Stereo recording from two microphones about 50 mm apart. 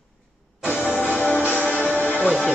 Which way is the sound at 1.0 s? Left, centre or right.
Left.